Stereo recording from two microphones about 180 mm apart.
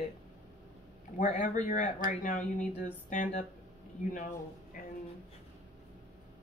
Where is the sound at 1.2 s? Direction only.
45° left (ahead or behind).